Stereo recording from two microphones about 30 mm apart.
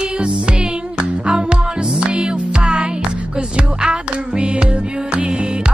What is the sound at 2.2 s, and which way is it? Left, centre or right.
Music, right.